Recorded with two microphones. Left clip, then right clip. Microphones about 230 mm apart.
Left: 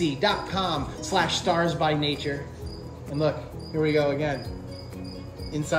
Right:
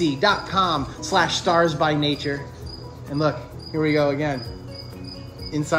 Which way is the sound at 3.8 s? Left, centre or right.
Right.